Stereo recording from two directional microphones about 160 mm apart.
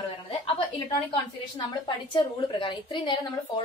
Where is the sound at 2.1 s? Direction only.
30° left (ahead or behind).